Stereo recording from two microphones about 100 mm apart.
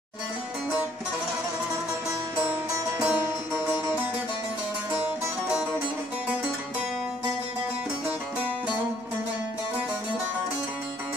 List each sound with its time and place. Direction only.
3.0 s music: 15° right (ahead or behind)